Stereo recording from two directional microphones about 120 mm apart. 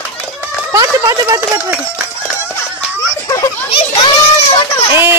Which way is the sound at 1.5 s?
10° right (ahead or behind).